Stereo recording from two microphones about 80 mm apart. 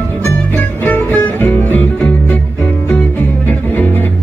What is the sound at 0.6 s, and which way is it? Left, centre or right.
Music, left.